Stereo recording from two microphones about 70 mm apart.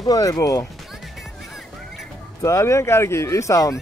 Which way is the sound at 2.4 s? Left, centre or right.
Left.